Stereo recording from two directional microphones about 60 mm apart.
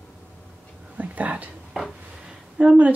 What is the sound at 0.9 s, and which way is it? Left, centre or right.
Whispering, right.